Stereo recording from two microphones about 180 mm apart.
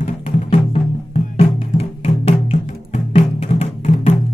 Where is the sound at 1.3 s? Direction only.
35° left (ahead or behind).